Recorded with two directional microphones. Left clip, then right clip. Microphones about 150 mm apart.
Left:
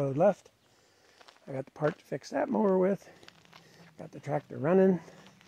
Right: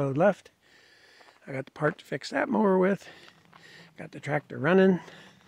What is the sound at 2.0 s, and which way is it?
Speech, 50° right (ahead or behind).